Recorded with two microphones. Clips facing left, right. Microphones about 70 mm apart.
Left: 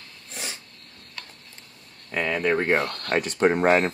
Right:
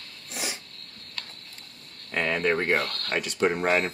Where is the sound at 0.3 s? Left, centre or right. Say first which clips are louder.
Right 2 dB; centre.